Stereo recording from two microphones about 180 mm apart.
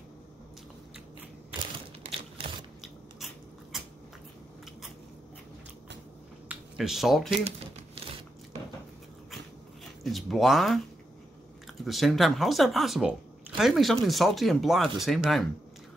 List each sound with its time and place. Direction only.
1.6 s crumpling: 30° right (ahead or behind)
6.5 s speech: centre (ahead or behind)
7.3 s a sound: 35° right (ahead or behind)
10.0 s speech: centre (ahead or behind)
11.8 s speech: centre (ahead or behind)